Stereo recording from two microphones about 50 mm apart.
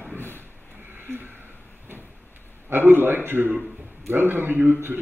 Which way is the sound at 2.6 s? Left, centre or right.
Right.